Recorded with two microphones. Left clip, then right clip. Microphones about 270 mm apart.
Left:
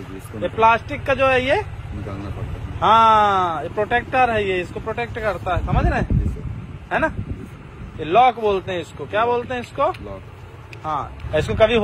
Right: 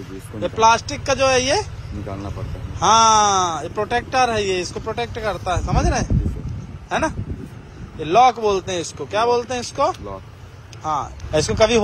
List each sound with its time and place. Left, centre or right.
0.4 s speech: centre
2.8 s speech: centre